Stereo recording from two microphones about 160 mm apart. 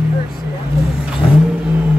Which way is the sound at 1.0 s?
5° right (ahead or behind).